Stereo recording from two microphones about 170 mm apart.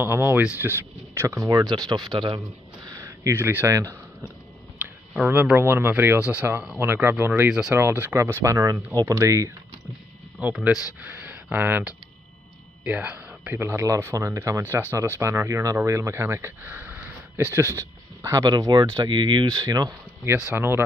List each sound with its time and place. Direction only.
0.0 s speech: 15° right (ahead or behind)
5.1 s speech: 10° right (ahead or behind)
10.4 s speech: 5° right (ahead or behind); by 20.3 s 20° right (ahead or behind)
20.3 s speech: 10° right (ahead or behind)